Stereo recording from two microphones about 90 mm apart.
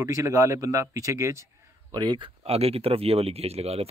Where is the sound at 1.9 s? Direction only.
55° right (ahead or behind).